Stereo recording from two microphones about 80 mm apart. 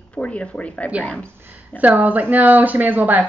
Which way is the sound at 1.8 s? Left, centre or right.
Centre.